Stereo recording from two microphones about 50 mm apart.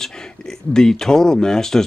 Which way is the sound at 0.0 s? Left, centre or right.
Centre.